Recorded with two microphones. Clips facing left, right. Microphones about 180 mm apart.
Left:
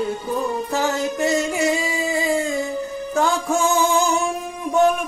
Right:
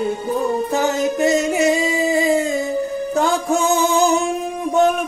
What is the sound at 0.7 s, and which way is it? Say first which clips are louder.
Music: right 3 dB; 20° right (ahead or behind).